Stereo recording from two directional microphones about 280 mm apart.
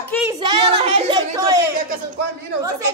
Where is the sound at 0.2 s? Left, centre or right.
Centre.